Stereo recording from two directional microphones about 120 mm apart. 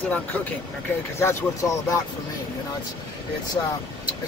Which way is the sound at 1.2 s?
25° left (ahead or behind).